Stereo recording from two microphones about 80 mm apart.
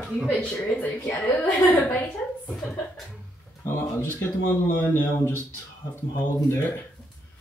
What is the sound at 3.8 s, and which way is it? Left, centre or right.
Speech, left.